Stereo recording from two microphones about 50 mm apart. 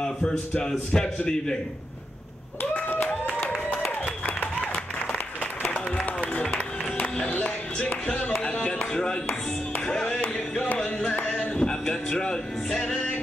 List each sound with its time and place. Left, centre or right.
0.0 s a man's voice: centre
2.6 s clapping: left
3.1 s a sound: left
7.0 s music: left
7.9 s speech: left
8.4 s chop: centre
9.8 s music: centre
11.1 s a sound: left
11.5 s music: centre